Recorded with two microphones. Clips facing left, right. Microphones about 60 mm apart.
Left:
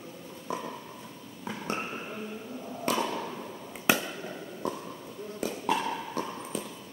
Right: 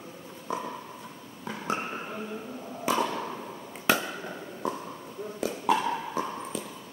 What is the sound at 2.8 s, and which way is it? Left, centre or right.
Chop, centre.